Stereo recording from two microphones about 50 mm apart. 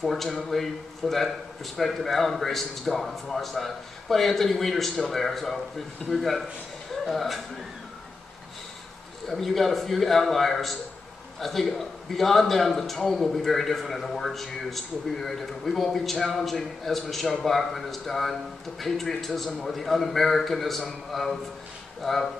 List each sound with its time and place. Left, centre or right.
0.0 s a man's voice: centre
9.3 s a man's voice: centre